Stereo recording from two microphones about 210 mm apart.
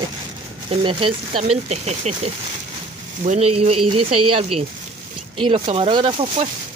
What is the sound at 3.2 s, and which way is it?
Speech, 30° right (ahead or behind).